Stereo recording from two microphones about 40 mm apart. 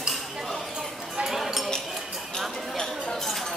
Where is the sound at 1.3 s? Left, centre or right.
Centre.